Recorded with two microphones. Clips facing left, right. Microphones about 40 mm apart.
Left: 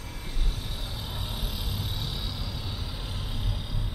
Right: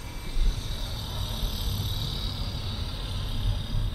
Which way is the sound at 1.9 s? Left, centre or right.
Centre.